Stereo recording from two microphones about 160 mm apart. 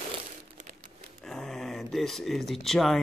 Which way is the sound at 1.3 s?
5° left (ahead or behind).